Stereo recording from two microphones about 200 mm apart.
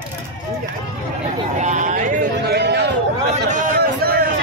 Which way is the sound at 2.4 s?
55° right (ahead or behind).